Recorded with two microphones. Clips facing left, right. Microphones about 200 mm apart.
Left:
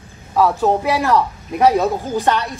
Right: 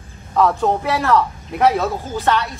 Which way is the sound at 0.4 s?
5° left (ahead or behind).